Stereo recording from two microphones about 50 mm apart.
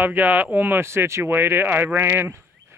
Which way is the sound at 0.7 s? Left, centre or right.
Right.